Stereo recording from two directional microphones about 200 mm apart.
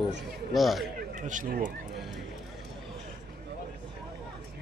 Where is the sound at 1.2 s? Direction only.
40° right (ahead or behind).